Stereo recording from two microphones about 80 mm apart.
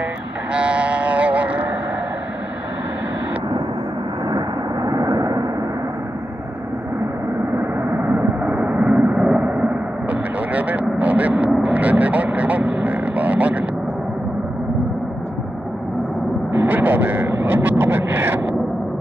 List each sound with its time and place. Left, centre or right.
0.5 s a sound: centre
4.8 s vehicle: right
7.5 s vehicle: right
8.8 s a sound: centre
11.6 s vehicle: right
16.5 s vehicle: right